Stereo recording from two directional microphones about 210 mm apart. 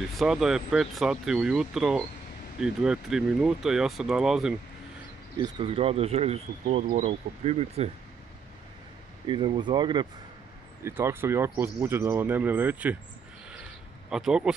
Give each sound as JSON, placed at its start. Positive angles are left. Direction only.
{"t": 0.1, "sound": "speech", "side_deg": 0}
{"t": 5.4, "sound": "speech", "side_deg": -25}
{"t": 9.3, "sound": "speech", "side_deg": -20}
{"t": 14.1, "sound": "speech", "side_deg": -5}